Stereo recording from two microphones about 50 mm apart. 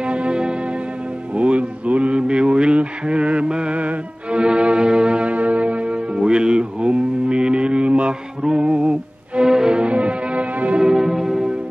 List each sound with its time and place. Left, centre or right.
0.0 s music: right
1.3 s mantra: right
8.4 s music: centre
10.8 s music: centre